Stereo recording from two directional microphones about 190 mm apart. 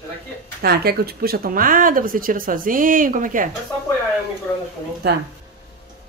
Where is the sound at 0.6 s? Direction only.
55° right (ahead or behind).